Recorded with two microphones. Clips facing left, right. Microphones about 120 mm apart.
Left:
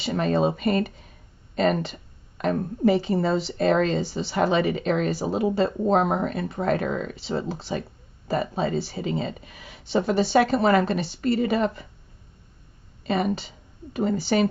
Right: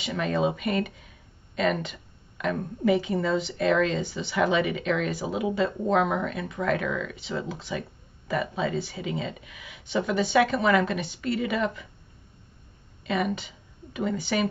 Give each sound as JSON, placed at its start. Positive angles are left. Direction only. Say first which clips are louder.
{"t": 0.0, "sound": "speech", "louder": "left 3 dB", "side_deg": 35}
{"t": 13.0, "sound": "speech", "louder": "left 3 dB", "side_deg": 35}